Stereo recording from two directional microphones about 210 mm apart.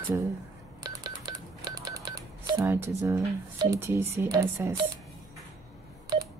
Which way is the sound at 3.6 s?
10° right (ahead or behind).